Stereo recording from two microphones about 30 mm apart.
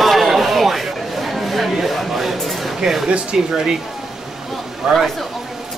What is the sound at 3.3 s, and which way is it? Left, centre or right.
Speech, centre.